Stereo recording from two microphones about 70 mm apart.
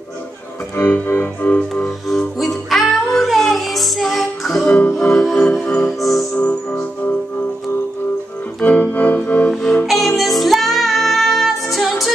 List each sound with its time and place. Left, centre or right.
0.7 s music: left
2.0 s music: centre
4.6 s music: left
5.1 s music: centre
6.3 s music: left
8.6 s organ: left
9.5 s music: centre